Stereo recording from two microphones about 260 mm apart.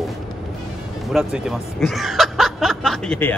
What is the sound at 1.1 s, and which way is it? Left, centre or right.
Speech, centre.